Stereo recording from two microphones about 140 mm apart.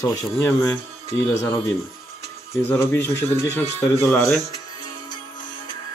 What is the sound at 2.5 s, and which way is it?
Speech, 15° left (ahead or behind).